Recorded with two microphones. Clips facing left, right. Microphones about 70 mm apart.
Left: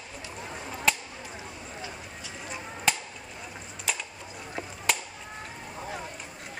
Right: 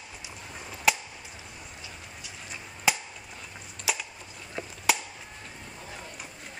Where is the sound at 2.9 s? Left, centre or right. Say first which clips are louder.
Right 1 dB; centre.